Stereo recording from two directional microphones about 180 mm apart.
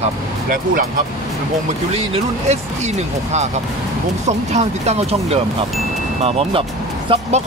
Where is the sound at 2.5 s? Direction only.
40° right (ahead or behind).